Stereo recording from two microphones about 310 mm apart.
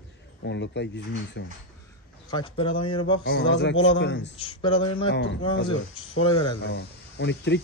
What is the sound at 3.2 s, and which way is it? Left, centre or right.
Speech, left.